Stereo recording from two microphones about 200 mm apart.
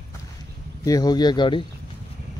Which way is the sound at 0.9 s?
20° left (ahead or behind).